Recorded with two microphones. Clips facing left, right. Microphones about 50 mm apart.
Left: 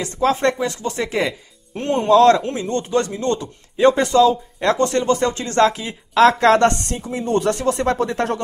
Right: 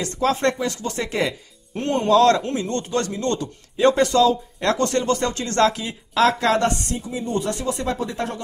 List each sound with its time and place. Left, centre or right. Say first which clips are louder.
0.0 s a man's voice: left 3 dB; left
6.4 s speech: left 6 dB; left